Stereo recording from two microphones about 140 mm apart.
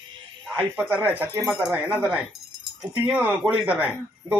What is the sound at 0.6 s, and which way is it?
Speech, 10° right (ahead or behind).